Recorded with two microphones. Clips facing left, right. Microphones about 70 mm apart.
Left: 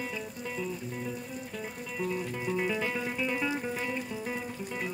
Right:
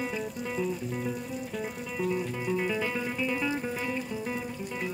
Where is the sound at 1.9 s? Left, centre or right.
Centre.